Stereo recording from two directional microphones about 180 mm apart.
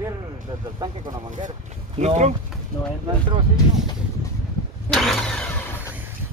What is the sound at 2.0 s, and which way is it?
Speech, 35° right (ahead or behind).